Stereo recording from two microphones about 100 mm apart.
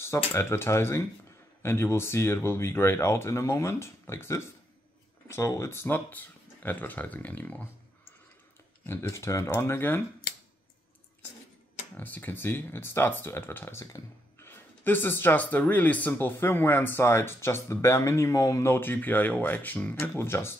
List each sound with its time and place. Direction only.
0.0 s speech: 25° left (ahead or behind)
8.8 s speech: 25° left (ahead or behind)
12.0 s speech: 20° left (ahead or behind)